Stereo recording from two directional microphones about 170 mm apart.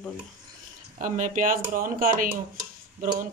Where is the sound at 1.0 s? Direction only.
50° right (ahead or behind).